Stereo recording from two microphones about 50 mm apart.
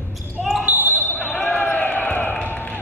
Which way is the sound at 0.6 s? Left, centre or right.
Right.